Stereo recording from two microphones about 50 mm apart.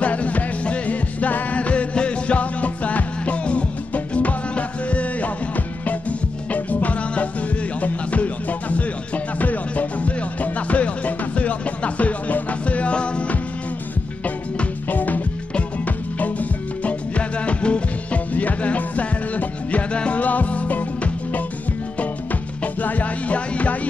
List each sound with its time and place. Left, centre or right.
0.0 s music: left
14.2 s music: left
22.6 s music: left